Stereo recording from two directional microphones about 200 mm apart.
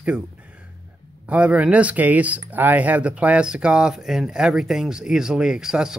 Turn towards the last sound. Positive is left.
turn(degrees=-5)  # may be behind; listen again after turning